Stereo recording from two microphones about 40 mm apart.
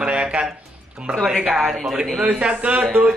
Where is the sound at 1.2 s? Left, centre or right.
Centre.